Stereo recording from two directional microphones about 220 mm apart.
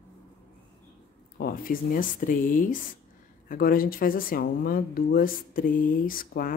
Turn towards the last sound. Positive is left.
turn(degrees=40)  # may be behind; listen again after turning